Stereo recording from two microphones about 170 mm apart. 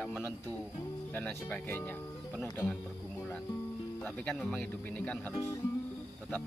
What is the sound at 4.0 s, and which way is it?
Speech, 5° left (ahead or behind).